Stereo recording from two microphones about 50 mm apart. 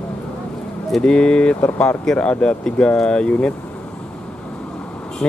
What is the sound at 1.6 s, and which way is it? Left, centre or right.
Speech, left.